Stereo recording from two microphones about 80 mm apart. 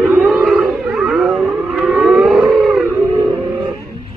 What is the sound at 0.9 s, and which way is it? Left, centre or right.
Civil defense siren, centre.